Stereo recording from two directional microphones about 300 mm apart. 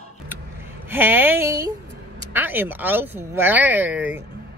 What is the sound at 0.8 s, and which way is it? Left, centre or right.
Speech, centre.